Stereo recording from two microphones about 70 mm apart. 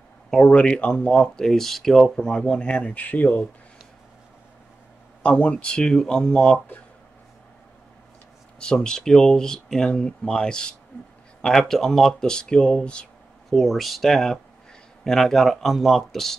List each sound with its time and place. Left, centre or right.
0.3 s speech: centre
5.2 s speech: centre
8.5 s speech: centre
13.5 s speech: centre